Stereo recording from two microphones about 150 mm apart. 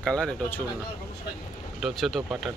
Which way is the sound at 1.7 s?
Centre (ahead or behind).